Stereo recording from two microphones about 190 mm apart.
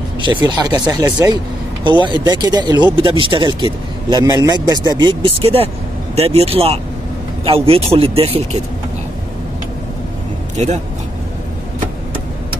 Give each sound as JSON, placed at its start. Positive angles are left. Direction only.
{"t": 0.2, "sound": "speech", "side_deg": -25}